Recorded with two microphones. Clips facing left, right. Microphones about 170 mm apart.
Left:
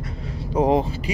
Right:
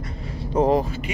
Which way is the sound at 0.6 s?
20° left (ahead or behind).